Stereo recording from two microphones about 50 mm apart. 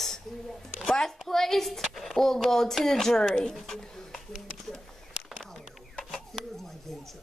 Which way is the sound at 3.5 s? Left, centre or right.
Centre.